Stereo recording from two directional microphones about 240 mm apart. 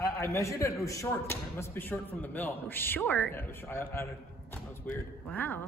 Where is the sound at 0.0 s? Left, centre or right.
Centre.